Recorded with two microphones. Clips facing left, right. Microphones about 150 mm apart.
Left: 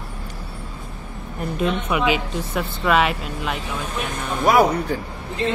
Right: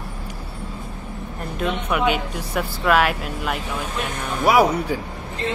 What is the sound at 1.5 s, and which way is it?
Speech, centre (ahead or behind).